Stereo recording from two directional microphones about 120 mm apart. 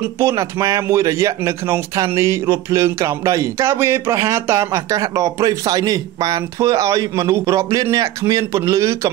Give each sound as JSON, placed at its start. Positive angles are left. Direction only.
{"t": 0.2, "sound": "a man's voice", "side_deg": -25}